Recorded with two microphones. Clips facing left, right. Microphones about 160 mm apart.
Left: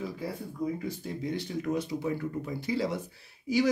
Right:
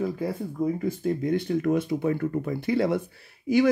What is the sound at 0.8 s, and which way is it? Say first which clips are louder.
Speech: right 8 dB; 50° right (ahead or behind).